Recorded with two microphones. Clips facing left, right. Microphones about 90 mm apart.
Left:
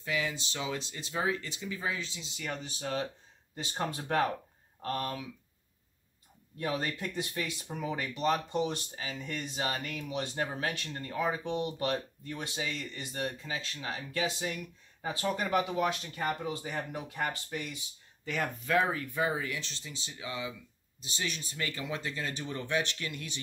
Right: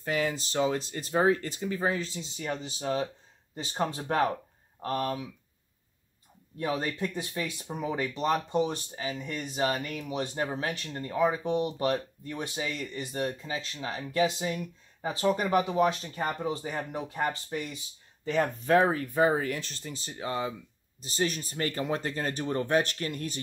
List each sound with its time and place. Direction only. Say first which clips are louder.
0.0 s speech: right 5 dB; 45° right (ahead or behind); by 4.3 s 25° right (ahead or behind)
4.8 s speech: right 4 dB; 15° right (ahead or behind)
6.6 s speech: right 3 dB; 25° right (ahead or behind); by 23.4 s 45° right (ahead or behind)